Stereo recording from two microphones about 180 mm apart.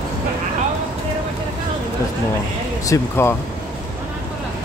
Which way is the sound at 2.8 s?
15° left (ahead or behind).